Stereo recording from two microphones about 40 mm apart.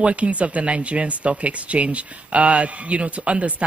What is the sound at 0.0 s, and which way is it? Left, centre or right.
Speech, right.